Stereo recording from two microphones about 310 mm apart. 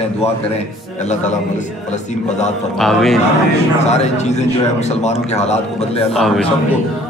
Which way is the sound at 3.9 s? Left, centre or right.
Left.